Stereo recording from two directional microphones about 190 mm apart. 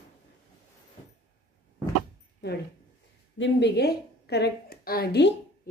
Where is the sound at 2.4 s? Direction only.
65° left (ahead or behind).